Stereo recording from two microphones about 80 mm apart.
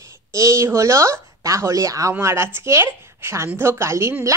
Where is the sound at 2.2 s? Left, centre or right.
Right.